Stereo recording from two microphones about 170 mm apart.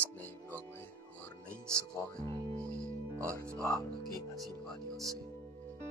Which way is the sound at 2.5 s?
5° left (ahead or behind).